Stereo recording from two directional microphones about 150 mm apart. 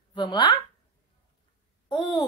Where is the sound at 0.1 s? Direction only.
30° left (ahead or behind).